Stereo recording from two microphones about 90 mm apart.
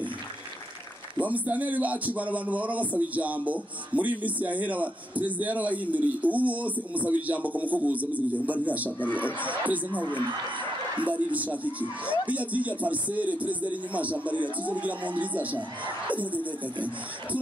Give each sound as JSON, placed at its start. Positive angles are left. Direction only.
{"t": 1.2, "sound": "speech", "side_deg": -15}
{"t": 9.0, "sound": "speech", "side_deg": 20}
{"t": 9.4, "sound": "speech", "side_deg": -15}
{"t": 11.1, "sound": "speech", "side_deg": -15}